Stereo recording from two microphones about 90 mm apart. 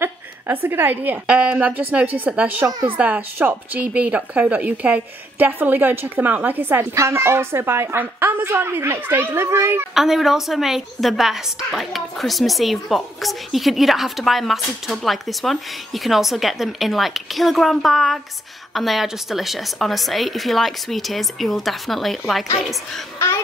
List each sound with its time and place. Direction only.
0.0 s a woman's voice: 25° right (ahead or behind)
9.9 s a woman's voice: 5° right (ahead or behind)
23.1 s babbling: 30° left (ahead or behind)